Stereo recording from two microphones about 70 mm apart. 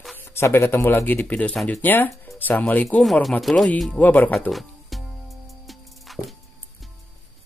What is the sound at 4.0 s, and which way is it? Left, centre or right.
Speech, left.